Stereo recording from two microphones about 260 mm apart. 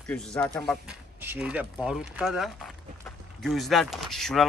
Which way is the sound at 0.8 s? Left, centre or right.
Centre.